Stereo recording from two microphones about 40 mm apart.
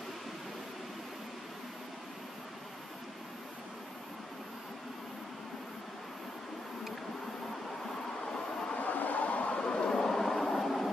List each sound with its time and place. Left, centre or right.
8.7 s a sound: left
9.6 s vehicle: left
9.8 s vehicle: centre